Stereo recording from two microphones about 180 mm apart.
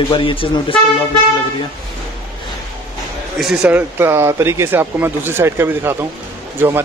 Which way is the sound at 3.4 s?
5° right (ahead or behind).